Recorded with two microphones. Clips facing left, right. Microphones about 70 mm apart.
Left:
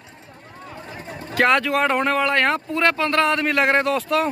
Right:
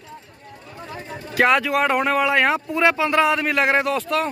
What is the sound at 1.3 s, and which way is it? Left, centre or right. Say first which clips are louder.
Speech: even; centre.